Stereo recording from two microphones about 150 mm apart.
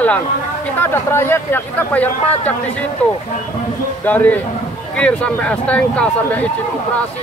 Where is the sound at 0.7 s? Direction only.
15° left (ahead or behind).